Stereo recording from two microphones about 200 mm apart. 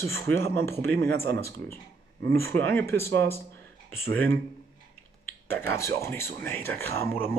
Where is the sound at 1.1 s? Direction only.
55° right (ahead or behind).